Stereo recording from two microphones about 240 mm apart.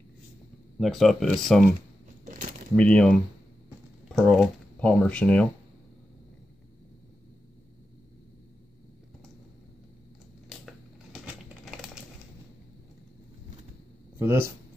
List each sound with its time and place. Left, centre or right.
0.7 s speech: centre
2.2 s crumpling: right
2.7 s speech: centre
11.6 s typewriter: centre
14.1 s speech: centre